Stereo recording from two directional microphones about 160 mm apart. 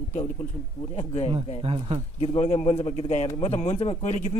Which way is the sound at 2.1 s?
40° left (ahead or behind).